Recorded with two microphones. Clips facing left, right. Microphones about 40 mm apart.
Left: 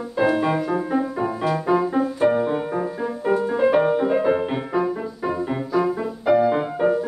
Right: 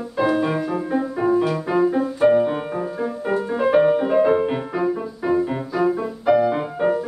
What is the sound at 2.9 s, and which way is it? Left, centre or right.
Music, centre.